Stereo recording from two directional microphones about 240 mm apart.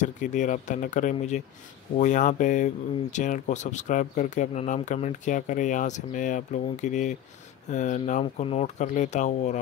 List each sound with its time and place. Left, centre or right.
0.0 s speech: left